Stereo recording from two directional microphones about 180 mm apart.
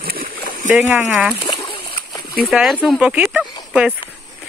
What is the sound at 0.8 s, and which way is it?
Speech, 10° right (ahead or behind).